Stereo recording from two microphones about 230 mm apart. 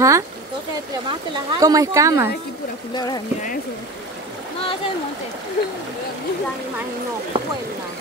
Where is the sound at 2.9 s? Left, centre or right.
Centre.